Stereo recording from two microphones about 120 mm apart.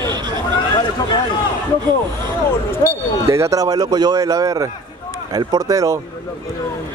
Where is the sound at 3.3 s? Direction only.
25° right (ahead or behind).